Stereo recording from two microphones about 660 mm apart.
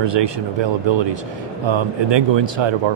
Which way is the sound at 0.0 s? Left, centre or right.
Right.